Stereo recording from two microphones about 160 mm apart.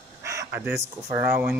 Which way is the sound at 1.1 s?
10° right (ahead or behind).